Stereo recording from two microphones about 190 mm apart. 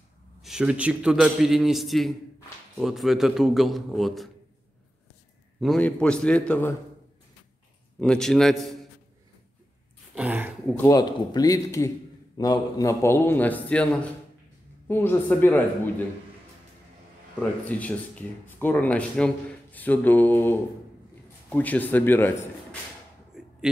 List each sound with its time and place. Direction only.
0.4 s a man's voice: 5° right (ahead or behind)
5.6 s a man's voice: 5° left (ahead or behind)
8.0 s a man's voice: 5° left (ahead or behind)
10.1 s a sound: 10° right (ahead or behind)
10.7 s speech: 15° left (ahead or behind)
14.9 s speech: 10° left (ahead or behind)
17.4 s a man's voice: 10° left (ahead or behind)
23.3 s a sound: 5° right (ahead or behind)